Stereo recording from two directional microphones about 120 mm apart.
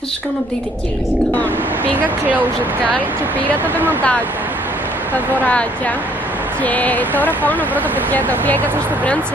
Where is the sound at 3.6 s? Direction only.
15° right (ahead or behind).